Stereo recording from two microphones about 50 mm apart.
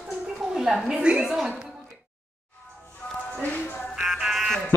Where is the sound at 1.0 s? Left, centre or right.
Right.